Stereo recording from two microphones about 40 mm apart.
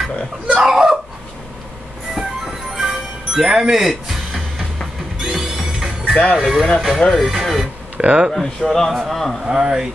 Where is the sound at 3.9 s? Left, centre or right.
Centre.